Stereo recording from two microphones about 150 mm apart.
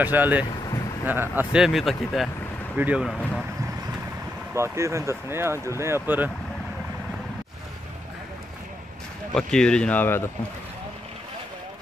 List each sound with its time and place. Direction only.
0.0 s speech: 10° right (ahead or behind)
3.1 s speech: 10° left (ahead or behind)
4.6 s speech: 20° right (ahead or behind)
9.3 s speech: 5° left (ahead or behind)